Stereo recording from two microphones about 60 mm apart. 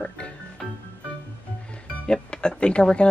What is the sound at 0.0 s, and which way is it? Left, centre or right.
Music, centre.